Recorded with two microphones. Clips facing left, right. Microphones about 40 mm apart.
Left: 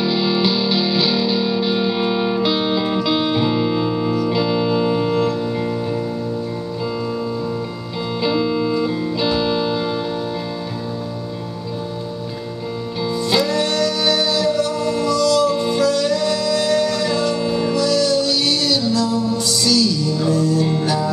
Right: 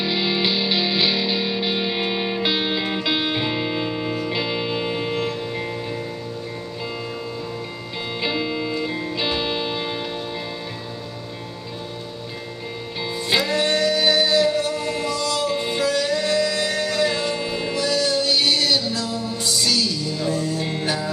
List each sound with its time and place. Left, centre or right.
0.0 s music: centre
8.2 s music: centre
13.3 s music: right